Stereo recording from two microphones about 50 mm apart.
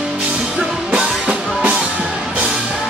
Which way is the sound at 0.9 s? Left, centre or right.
Right.